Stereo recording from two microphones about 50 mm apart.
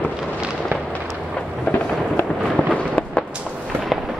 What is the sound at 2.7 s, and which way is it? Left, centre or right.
Fireworks, left.